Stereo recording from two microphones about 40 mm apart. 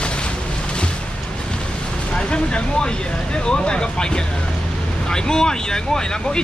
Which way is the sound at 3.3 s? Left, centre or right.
Left.